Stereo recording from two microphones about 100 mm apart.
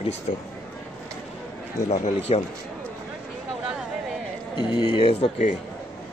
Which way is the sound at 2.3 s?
90° left.